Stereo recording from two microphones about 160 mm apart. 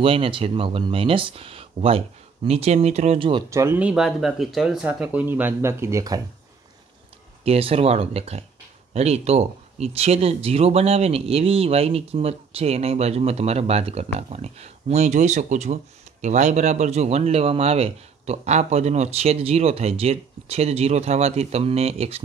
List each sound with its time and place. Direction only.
0.0 s speech: 35° right (ahead or behind)
3.4 s speech: 15° right (ahead or behind)
7.4 s speech: 40° right (ahead or behind)